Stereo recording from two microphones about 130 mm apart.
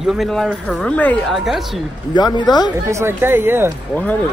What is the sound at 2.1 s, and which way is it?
Speech, 35° left (ahead or behind).